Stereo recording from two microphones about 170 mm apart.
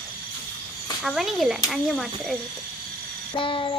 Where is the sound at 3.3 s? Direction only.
30° left (ahead or behind).